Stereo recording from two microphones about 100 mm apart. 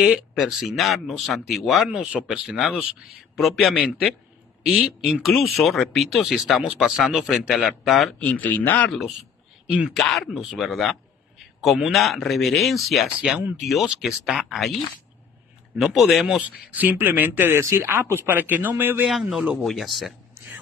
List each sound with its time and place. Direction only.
0.3 s speech: centre (ahead or behind)
8.2 s speech: 15° left (ahead or behind)
9.7 s speech: 15° right (ahead or behind)
9.9 s a man's voice: 5° left (ahead or behind)
15.7 s speech: centre (ahead or behind)
16.7 s speech: 20° right (ahead or behind)
19.0 s speech: 5° right (ahead or behind)
19.6 s speech: centre (ahead or behind)